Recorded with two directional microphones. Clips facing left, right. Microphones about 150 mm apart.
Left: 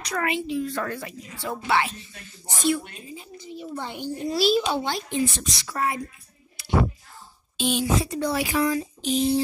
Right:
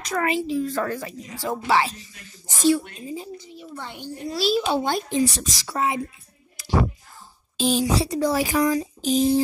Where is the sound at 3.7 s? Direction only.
20° left (ahead or behind).